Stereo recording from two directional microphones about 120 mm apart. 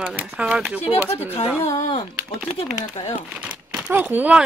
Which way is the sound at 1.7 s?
60° left (ahead or behind).